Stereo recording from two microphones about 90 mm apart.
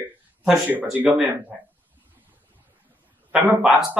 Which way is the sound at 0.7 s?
20° right (ahead or behind).